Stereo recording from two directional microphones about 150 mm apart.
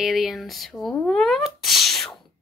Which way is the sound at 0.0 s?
Centre (ahead or behind).